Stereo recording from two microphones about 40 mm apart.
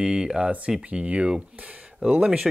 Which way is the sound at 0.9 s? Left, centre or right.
Right.